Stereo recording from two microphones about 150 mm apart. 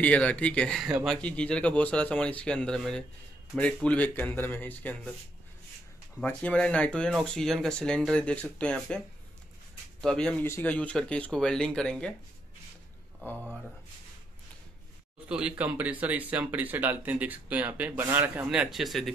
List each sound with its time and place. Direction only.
0.0 s speech: 10° left (ahead or behind)
6.2 s speech: 10° left (ahead or behind)
10.0 s speech: 5° left (ahead or behind)
15.2 s speech: 5° right (ahead or behind)